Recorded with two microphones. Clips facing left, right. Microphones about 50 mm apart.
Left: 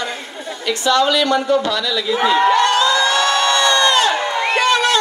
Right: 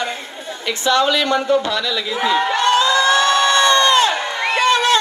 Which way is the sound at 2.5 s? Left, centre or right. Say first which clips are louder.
Left 1 dB; right.